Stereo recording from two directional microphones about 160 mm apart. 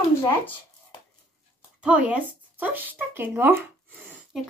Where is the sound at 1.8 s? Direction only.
5° right (ahead or behind).